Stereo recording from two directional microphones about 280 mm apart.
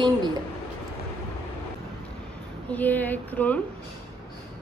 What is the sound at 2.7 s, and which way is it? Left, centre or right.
Speech, centre.